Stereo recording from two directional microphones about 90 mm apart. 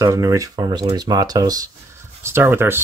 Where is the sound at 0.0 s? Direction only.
40° right (ahead or behind).